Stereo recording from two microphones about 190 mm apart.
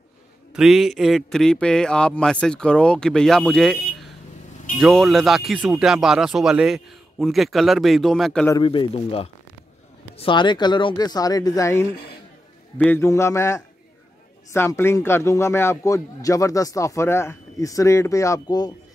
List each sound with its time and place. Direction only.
0.5 s speech: 5° right (ahead or behind)
8.5 s a man's voice: 25° left (ahead or behind)